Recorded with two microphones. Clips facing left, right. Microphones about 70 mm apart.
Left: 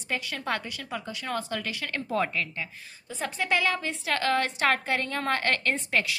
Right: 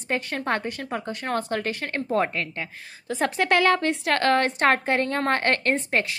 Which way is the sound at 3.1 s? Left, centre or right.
Right.